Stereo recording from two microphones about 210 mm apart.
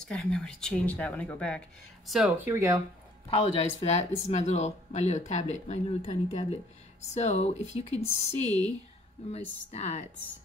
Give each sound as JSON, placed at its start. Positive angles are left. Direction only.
{"t": 0.1, "sound": "speech", "side_deg": 5}
{"t": 2.5, "sound": "speech", "side_deg": -15}
{"t": 3.3, "sound": "speech", "side_deg": 30}
{"t": 7.2, "sound": "speech", "side_deg": 35}